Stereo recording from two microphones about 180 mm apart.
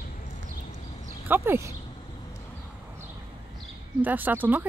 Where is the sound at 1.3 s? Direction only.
15° right (ahead or behind).